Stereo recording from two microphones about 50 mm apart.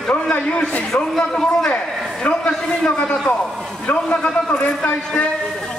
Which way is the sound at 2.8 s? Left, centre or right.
Centre.